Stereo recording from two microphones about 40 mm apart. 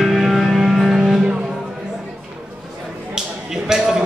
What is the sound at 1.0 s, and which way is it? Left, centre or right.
Music, centre.